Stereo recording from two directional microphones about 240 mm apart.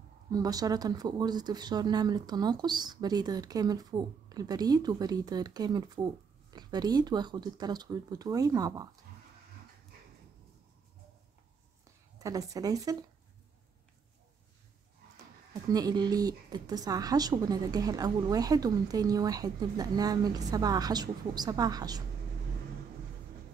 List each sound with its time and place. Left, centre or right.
0.3 s speech: centre
12.2 s speech: centre
15.7 s speech: centre